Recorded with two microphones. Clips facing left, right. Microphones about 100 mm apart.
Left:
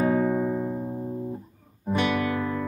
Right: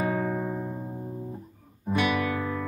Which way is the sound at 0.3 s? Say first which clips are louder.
Left 5 dB; 20° left (ahead or behind).